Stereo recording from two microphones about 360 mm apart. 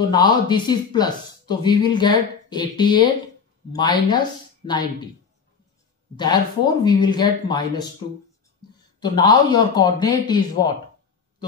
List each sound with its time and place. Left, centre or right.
0.1 s speech: centre
6.1 s speech: centre
9.0 s speech: centre